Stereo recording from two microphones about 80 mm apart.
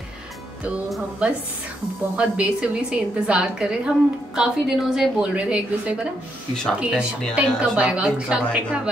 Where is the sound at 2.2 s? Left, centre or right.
Centre.